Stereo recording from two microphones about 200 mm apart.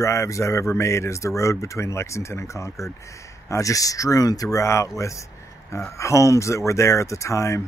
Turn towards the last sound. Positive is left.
turn(degrees=15)  # may be behind; listen again after turning